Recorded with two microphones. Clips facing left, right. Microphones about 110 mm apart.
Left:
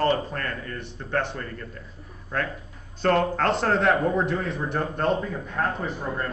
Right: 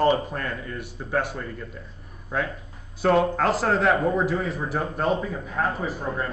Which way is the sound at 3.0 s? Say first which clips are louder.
Right 1 dB; 5° right (ahead or behind).